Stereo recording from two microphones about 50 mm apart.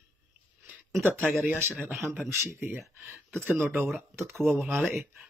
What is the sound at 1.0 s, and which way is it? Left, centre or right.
Speech, right.